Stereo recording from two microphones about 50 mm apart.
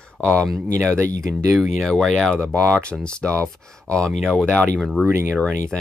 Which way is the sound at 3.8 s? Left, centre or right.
Centre.